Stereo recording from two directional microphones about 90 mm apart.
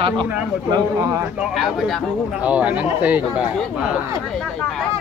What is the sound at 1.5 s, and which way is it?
Speech, centre (ahead or behind).